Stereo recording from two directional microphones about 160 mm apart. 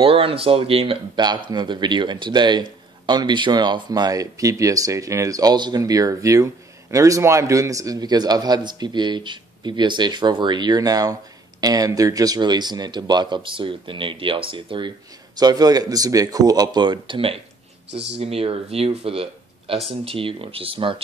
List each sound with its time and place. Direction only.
0.0 s speech: 35° right (ahead or behind)